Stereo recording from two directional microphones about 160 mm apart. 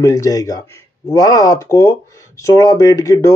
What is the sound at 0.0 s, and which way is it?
Speech, 20° left (ahead or behind).